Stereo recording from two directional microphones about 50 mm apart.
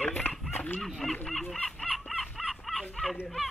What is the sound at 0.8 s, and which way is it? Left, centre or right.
Speech, centre.